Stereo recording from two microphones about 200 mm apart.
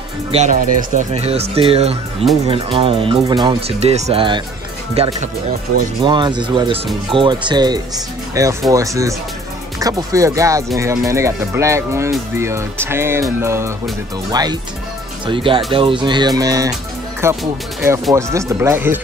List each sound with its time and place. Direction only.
0.3 s speech: 35° right (ahead or behind); by 18.9 s 10° right (ahead or behind)